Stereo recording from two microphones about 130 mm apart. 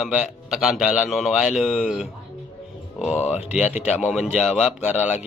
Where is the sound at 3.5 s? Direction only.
10° right (ahead or behind).